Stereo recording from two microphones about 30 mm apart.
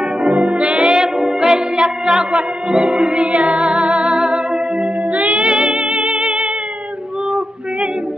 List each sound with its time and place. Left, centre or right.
0.3 s music: right
1.1 s music: right
7.2 s female singing: right